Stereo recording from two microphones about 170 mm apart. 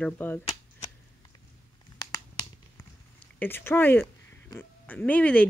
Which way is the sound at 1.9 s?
20° left (ahead or behind).